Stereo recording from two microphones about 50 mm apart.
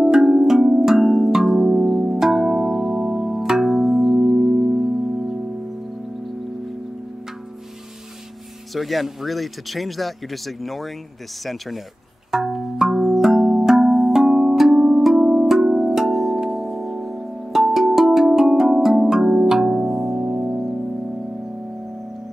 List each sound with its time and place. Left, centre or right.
0.0 s music: centre
3.7 s tubular bells: centre
8.7 s speech: centre
12.3 s tubular bells: centre
16.4 s music: centre
20.2 s music: right